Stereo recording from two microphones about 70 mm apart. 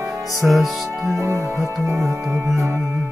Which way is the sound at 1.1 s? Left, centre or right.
Right.